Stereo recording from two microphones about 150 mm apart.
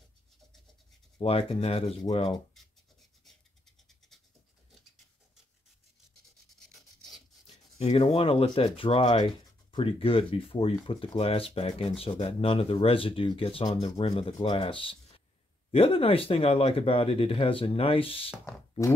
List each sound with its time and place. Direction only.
1.2 s speech: 40° left (ahead or behind)
6.7 s rub: centre (ahead or behind)
7.4 s rub: 45° left (ahead or behind)
8.0 s speech: 40° left (ahead or behind)